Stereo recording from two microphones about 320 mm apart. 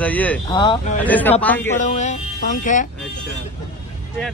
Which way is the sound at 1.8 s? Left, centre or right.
Left.